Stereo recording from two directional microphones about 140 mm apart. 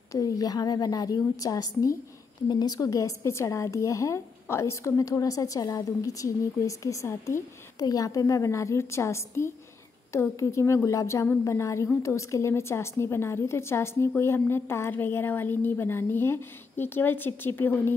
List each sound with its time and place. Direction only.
0.1 s a woman's voice: 25° left (ahead or behind)